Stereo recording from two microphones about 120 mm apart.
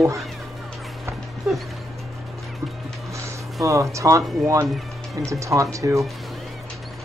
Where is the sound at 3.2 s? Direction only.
25° right (ahead or behind).